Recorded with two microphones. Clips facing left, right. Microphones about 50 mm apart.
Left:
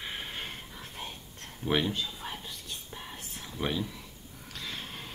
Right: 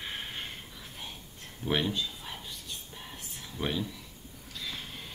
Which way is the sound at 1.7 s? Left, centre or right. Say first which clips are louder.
Left 1 dB; centre.